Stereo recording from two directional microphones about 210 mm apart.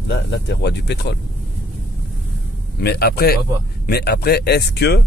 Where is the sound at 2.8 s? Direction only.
50° left (ahead or behind).